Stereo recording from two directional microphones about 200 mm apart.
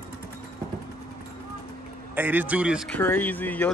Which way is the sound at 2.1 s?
10° right (ahead or behind).